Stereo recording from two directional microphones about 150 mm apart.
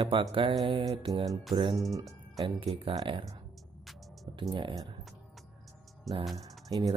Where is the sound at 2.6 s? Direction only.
35° right (ahead or behind).